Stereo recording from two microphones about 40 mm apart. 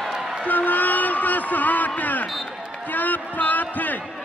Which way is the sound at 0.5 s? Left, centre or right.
Left.